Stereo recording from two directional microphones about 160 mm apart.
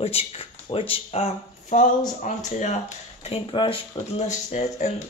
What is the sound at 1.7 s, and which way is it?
Speech, 50° left (ahead or behind).